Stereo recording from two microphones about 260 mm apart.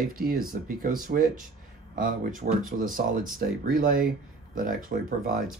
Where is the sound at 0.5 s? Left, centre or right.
Right.